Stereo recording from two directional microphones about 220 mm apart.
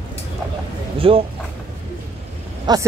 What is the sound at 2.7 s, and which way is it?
Speech, 20° right (ahead or behind).